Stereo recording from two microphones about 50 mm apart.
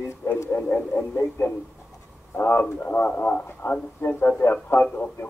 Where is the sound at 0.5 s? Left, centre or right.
Left.